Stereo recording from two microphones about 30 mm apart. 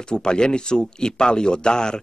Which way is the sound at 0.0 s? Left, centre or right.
Left.